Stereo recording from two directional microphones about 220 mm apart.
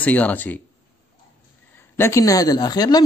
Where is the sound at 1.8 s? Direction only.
10° left (ahead or behind).